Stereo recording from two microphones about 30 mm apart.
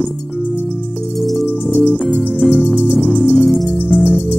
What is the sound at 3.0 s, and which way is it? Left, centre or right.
Music, left.